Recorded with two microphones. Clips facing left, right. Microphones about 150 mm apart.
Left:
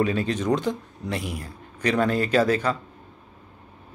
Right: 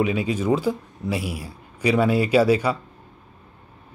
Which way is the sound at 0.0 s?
10° right (ahead or behind).